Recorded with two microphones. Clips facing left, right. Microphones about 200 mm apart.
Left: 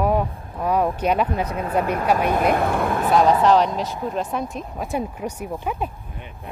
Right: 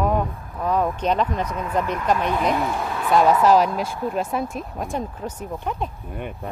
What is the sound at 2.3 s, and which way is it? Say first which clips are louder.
Speech: left 3 dB; 55° left (ahead or behind).